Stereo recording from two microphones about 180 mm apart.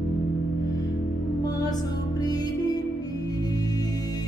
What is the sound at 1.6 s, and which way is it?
Music, 20° left (ahead or behind).